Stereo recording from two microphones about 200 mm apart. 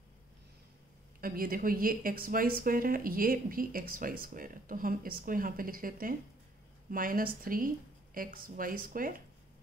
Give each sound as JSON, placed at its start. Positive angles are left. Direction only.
{"t": 1.2, "sound": "speech", "side_deg": -45}